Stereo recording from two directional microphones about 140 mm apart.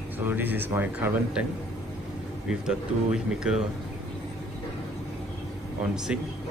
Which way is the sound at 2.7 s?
5° right (ahead or behind).